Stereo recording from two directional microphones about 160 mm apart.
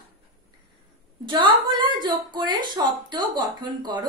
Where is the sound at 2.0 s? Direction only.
30° right (ahead or behind).